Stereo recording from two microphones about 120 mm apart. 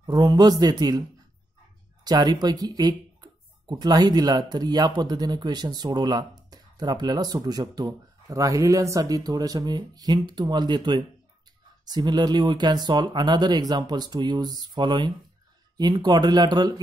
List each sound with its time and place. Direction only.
0.0 s speech: 35° right (ahead or behind)
2.0 s speech: 35° right (ahead or behind)